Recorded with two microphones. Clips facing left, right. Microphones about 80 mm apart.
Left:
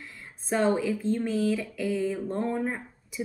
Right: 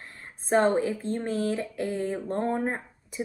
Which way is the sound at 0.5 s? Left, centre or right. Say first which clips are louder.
Right 2 dB; right.